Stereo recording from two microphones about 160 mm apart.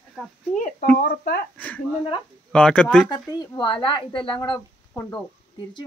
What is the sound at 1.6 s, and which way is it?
Speech, 10° left (ahead or behind).